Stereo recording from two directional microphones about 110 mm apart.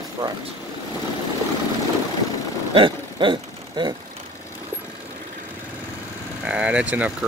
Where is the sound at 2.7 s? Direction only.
50° right (ahead or behind).